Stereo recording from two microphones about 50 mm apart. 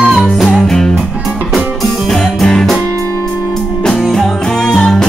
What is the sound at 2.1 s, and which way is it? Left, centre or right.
Music, centre.